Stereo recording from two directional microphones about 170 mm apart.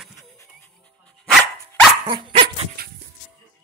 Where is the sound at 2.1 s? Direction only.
35° right (ahead or behind).